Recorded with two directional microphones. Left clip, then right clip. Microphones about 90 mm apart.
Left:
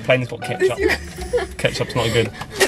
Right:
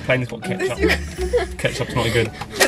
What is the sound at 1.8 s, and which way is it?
Speech, 20° left (ahead or behind).